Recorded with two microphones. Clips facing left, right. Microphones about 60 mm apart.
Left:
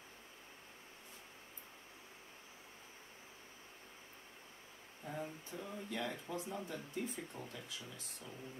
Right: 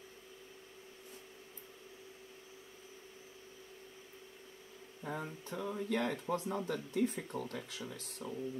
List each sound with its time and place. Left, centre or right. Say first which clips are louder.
5.0 s speech: right 3 dB; right